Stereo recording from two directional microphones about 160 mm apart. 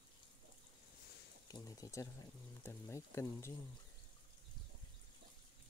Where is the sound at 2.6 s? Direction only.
20° left (ahead or behind).